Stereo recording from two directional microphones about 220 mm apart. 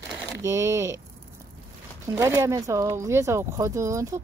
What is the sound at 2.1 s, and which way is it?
Speech, 10° right (ahead or behind).